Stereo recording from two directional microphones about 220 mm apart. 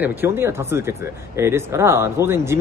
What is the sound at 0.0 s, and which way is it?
Speech, 10° right (ahead or behind).